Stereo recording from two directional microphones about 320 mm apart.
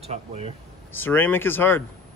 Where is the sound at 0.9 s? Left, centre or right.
Centre.